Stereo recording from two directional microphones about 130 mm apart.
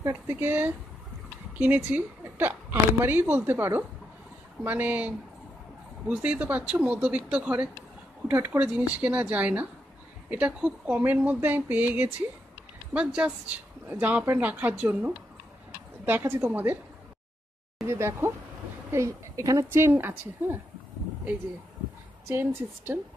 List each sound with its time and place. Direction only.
0.0 s a woman's voice: 15° right (ahead or behind)
17.8 s a woman's voice: 20° right (ahead or behind)
22.3 s a woman's voice: 15° right (ahead or behind)